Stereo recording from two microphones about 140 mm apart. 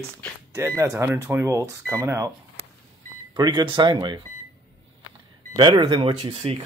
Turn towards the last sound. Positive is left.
turn(degrees=-40)  # may be behind; listen again after turning